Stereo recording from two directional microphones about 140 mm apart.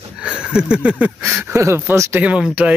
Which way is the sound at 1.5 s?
20° right (ahead or behind).